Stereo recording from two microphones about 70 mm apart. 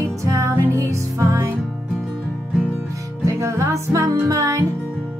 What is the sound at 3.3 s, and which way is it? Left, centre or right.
Music, right.